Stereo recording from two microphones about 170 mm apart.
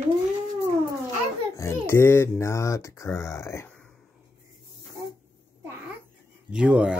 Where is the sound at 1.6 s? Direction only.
15° left (ahead or behind).